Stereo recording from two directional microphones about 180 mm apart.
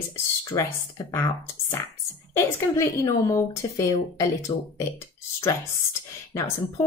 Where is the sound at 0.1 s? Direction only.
15° left (ahead or behind).